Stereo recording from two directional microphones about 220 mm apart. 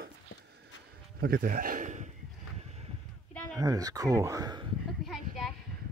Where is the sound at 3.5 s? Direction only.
15° right (ahead or behind).